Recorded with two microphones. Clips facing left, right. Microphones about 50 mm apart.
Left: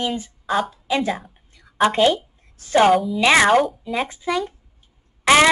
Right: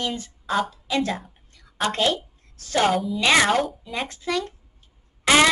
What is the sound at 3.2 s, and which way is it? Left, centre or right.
Speech, centre.